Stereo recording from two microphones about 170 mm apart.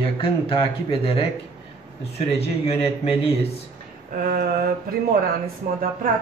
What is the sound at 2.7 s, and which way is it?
Speech, 35° left (ahead or behind).